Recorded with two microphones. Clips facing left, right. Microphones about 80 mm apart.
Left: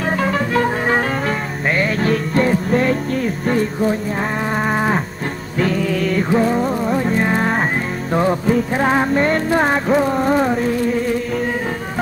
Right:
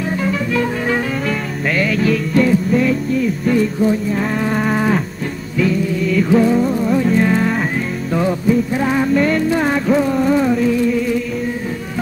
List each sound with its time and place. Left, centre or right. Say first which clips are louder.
0.2 s music: left 1 dB; left
4.7 s moo: right 1 dB; left
5.6 s music: right 1 dB; left
6.2 s music: right 5 dB; left